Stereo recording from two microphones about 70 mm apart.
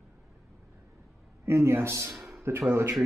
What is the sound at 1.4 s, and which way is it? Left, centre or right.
Speech, right.